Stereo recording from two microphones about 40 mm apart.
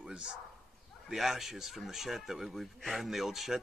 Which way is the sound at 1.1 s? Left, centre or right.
Centre.